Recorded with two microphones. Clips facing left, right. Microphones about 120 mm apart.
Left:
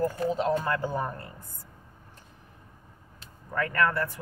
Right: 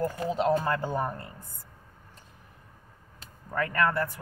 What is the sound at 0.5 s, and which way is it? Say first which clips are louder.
Speech: right 1 dB; 15° right (ahead or behind).